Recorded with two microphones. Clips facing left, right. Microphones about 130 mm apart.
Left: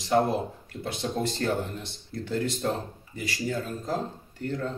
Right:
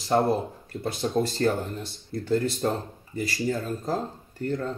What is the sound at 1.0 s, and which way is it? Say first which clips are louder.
Speech: right 4 dB; 35° right (ahead or behind).